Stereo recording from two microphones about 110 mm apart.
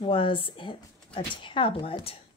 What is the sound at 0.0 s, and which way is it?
Speech, 50° left (ahead or behind).